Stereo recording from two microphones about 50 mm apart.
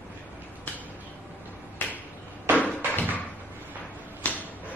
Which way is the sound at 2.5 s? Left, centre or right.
Left.